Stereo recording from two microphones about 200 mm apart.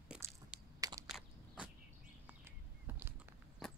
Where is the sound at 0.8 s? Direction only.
15° right (ahead or behind).